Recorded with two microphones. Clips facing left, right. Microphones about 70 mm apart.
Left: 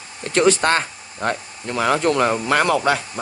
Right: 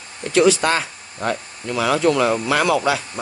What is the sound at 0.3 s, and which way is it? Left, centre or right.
A man's voice, left.